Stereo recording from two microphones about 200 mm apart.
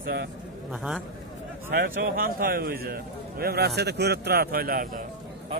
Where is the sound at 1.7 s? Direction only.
50° right (ahead or behind).